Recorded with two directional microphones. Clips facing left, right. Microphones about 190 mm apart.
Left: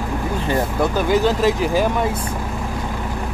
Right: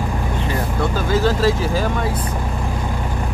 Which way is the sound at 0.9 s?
15° left (ahead or behind).